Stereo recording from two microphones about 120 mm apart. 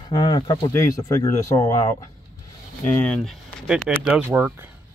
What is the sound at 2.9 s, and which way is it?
Speech, 10° left (ahead or behind).